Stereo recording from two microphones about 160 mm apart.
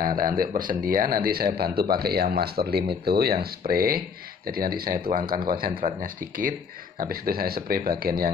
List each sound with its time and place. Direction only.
0.4 s speech: 60° right (ahead or behind)